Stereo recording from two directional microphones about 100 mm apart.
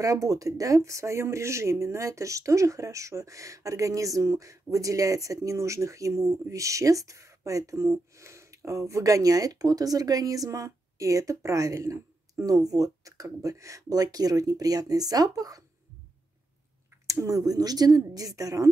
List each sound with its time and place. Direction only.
0.0 s speech: 35° right (ahead or behind)
17.0 s speech: 35° right (ahead or behind)